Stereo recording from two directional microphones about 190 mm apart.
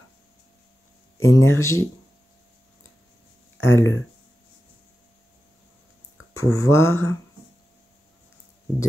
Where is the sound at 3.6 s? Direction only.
15° left (ahead or behind).